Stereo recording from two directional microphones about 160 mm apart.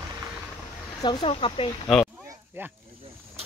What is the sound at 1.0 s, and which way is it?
Speech, 30° left (ahead or behind).